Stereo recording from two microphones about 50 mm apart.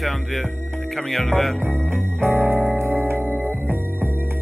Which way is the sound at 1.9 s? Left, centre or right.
Right.